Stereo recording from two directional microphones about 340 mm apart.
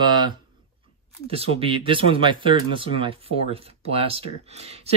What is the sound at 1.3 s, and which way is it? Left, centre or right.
Speech, centre.